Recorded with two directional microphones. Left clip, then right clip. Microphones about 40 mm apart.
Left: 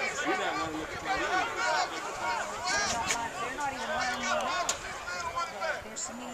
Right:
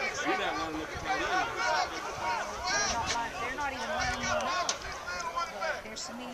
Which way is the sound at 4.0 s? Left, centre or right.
Right.